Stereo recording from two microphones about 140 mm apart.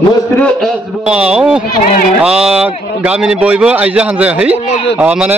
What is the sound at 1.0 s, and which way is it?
A man's voice, 5° right (ahead or behind).